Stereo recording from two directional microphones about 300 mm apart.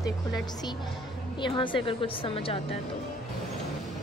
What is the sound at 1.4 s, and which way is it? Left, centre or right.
A woman's voice, centre.